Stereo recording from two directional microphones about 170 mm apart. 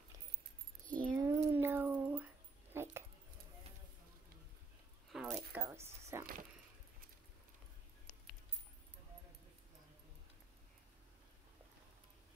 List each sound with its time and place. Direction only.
0.8 s keys jangling: 50° right (ahead or behind)
1.1 s dog: 15° right (ahead or behind)
5.1 s squish: 5° right (ahead or behind)